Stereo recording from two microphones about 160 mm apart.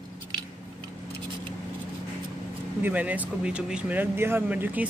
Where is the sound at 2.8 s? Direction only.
10° right (ahead or behind).